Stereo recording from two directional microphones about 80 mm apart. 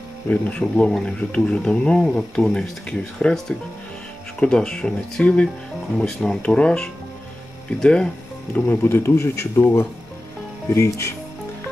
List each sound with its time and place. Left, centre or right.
0.3 s speech: centre
8.6 s speech: left